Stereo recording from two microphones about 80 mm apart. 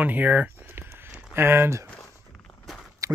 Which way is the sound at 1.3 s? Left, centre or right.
Right.